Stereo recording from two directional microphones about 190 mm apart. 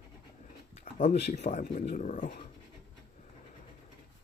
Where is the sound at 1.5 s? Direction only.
35° left (ahead or behind).